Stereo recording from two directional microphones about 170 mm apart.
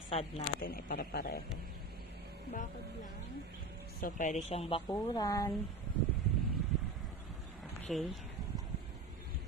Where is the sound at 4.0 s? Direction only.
50° left (ahead or behind).